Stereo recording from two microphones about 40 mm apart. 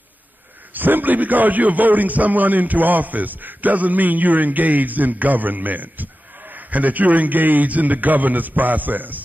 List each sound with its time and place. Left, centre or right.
0.7 s a man's voice: right